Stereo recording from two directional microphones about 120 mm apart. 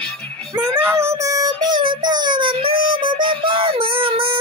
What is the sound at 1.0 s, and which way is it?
Child singing, 25° right (ahead or behind).